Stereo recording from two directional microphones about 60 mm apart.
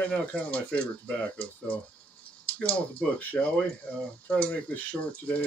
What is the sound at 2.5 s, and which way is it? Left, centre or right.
Speech, left.